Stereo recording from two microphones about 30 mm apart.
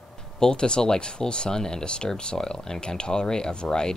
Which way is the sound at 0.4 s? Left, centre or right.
Left.